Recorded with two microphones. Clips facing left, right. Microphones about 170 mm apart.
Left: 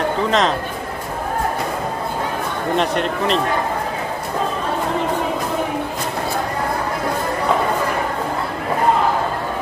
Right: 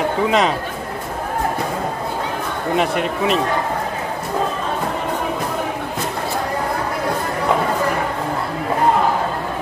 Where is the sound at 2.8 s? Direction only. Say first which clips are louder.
Right 1 dB; 5° right (ahead or behind).